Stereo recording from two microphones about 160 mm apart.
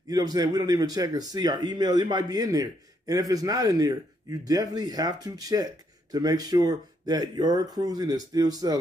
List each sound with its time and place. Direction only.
0.1 s a man's voice: 25° right (ahead or behind)